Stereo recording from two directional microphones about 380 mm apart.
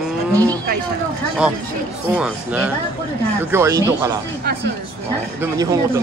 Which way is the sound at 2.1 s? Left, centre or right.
Centre.